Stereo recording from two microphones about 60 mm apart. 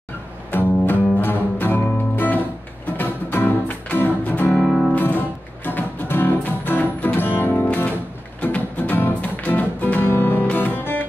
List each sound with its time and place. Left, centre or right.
0.5 s music: left
4.5 s music: centre
4.9 s music: left